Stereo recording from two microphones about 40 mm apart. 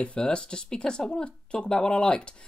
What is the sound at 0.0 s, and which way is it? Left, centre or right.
Speech, left.